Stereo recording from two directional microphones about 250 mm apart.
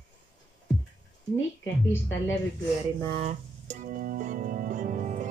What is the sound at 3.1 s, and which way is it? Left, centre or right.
Music, right.